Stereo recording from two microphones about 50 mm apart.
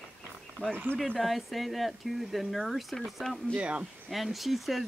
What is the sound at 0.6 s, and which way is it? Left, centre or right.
Speech, left.